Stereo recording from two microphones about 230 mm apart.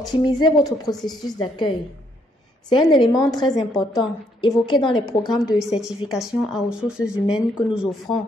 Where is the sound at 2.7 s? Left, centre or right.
Centre.